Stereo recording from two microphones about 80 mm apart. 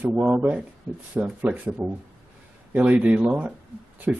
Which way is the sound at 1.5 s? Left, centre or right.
Right.